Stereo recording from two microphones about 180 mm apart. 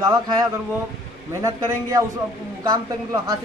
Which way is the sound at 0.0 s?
25° right (ahead or behind).